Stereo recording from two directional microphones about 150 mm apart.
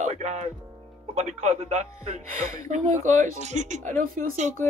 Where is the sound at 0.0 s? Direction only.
50° right (ahead or behind).